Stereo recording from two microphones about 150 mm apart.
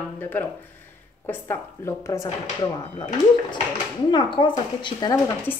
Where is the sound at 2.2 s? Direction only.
40° left (ahead or behind).